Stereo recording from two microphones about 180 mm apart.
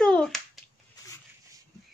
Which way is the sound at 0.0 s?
5° left (ahead or behind).